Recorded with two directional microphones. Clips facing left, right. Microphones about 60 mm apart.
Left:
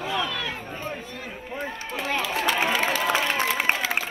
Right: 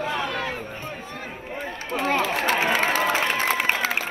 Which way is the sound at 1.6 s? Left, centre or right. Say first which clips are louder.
Right 5 dB; right.